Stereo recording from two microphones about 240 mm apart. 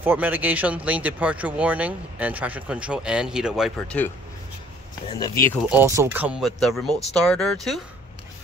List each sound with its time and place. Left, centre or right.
0.0 s speech: centre
5.2 s speech: centre
5.7 s speech: centre